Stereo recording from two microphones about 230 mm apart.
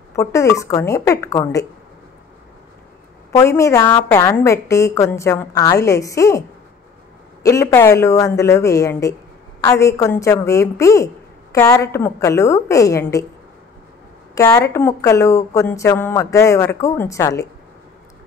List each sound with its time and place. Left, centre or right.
0.1 s a woman's voice: centre
3.3 s a woman's voice: centre
7.4 s a woman's voice: centre
14.3 s a woman's voice: centre